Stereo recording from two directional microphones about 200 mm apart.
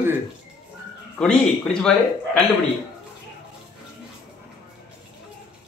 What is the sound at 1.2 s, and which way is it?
Speech, 5° left (ahead or behind).